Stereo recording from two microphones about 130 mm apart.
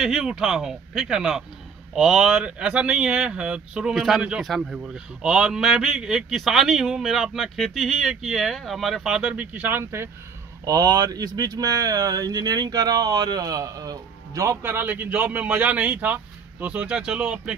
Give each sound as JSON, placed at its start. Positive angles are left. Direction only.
{"t": 0.0, "sound": "speech", "side_deg": -5}